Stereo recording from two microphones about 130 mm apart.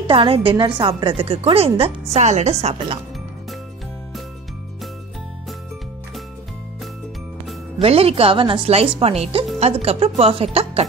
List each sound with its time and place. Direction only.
0.0 s a woman's voice: 45° right (ahead or behind)
7.8 s a woman's voice: 50° right (ahead or behind)